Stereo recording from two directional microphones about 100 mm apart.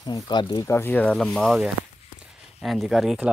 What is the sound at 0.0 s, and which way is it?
Speech, 45° left (ahead or behind).